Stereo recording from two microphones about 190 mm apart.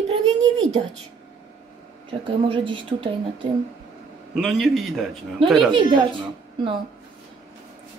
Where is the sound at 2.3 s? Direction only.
25° right (ahead or behind).